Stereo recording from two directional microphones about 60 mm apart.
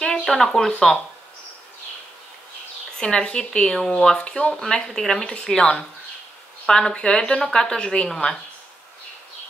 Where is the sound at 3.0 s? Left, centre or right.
Centre.